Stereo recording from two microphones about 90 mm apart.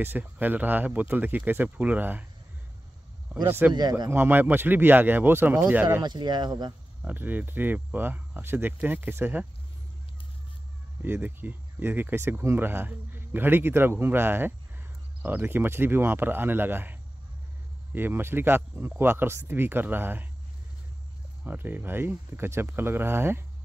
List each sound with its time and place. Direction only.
0.0 s speech: 20° right (ahead or behind)
3.4 s speech: 25° right (ahead or behind)
6.0 s speech: 55° right (ahead or behind)
7.0 s speech: 20° right (ahead or behind)
11.0 s speech: 20° right (ahead or behind)
21.5 s speech: 20° right (ahead or behind)